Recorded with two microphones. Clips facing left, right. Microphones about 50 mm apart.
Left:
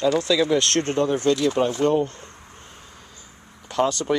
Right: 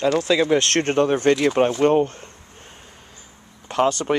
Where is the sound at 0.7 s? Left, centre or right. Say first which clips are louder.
Right 3 dB; right.